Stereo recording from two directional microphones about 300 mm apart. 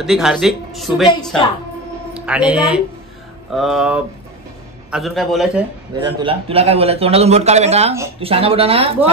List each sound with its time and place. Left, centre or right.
0.0 s speech: centre
2.1 s a woman's voice: centre
5.9 s a man's voice: centre